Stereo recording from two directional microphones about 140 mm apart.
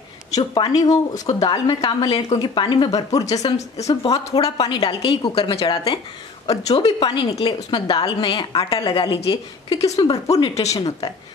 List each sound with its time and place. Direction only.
0.3 s a woman's voice: 30° left (ahead or behind)
3.5 s speech: 50° left (ahead or behind)
4.6 s a woman's voice: 35° left (ahead or behind)
10.2 s speech: 50° left (ahead or behind)
10.7 s speech: 25° left (ahead or behind)